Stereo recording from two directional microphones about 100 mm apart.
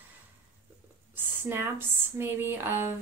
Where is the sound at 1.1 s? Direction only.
20° right (ahead or behind).